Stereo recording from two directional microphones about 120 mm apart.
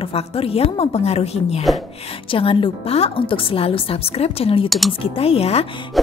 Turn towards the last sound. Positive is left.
turn(degrees=0)  # may be behind; listen again after turning